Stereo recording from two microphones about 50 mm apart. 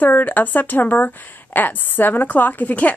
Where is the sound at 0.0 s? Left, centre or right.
Left.